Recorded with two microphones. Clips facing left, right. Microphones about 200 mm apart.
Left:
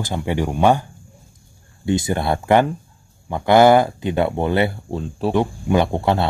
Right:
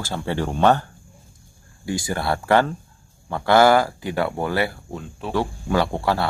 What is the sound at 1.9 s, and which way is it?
A man's voice, 20° left (ahead or behind).